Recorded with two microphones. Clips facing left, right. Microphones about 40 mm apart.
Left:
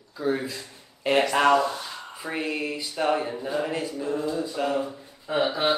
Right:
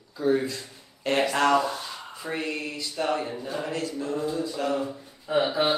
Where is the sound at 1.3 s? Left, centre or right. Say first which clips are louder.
Left 2 dB; centre.